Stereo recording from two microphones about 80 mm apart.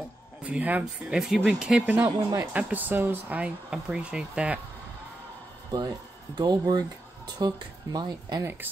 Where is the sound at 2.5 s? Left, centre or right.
Right.